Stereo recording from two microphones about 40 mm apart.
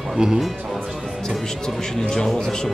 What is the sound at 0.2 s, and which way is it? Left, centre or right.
Speech, centre.